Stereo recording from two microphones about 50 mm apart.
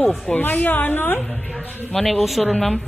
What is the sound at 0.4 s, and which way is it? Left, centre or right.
Speech, left.